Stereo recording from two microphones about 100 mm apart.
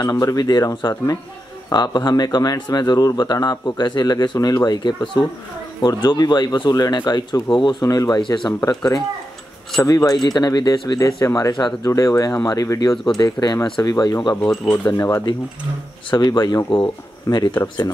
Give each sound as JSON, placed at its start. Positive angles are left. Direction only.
{"t": 0.0, "sound": "speech", "side_deg": 40}
{"t": 12.9, "sound": "speech", "side_deg": 5}
{"t": 13.2, "sound": "speech", "side_deg": 45}
{"t": 14.3, "sound": "speech", "side_deg": 25}
{"t": 16.1, "sound": "speech", "side_deg": 45}